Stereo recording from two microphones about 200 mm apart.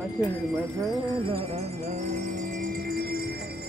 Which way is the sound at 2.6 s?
50° right (ahead or behind).